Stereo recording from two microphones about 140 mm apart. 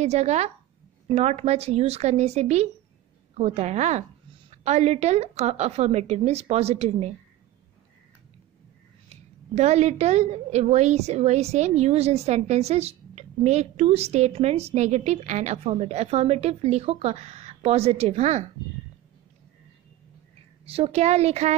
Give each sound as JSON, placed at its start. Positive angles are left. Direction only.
{"t": 0.0, "sound": "a woman's voice", "side_deg": -50}
{"t": 9.6, "sound": "a woman's voice", "side_deg": -50}
{"t": 20.6, "sound": "a woman's voice", "side_deg": -45}